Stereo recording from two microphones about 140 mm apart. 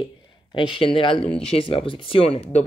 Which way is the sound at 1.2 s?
5° left (ahead or behind).